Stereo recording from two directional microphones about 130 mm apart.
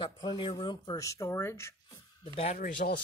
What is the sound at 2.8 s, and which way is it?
Speech, 90° left.